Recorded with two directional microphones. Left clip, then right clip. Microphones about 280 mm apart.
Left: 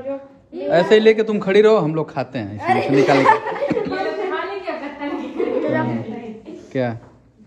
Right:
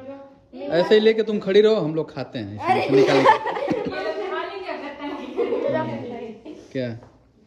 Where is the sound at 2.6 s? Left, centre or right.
Centre.